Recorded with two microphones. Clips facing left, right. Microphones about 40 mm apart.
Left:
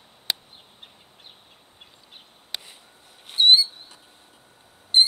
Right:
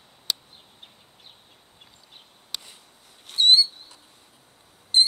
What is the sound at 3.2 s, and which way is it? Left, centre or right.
Owl, centre.